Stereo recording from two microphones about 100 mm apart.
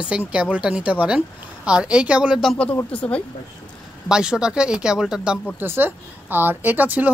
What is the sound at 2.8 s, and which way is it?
Speech, 15° left (ahead or behind).